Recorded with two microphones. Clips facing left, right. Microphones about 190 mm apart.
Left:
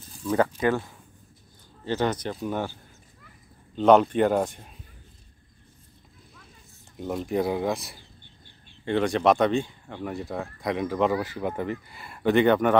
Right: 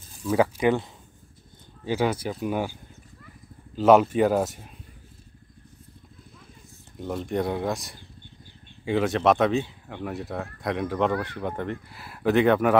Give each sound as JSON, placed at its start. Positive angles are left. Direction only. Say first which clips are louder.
{"t": 0.2, "sound": "speech", "louder": "right 1 dB", "side_deg": -5}
{"t": 0.7, "sound": "speech", "louder": "right 2 dB", "side_deg": -15}
{"t": 7.0, "sound": "speech", "louder": "left 1 dB", "side_deg": 0}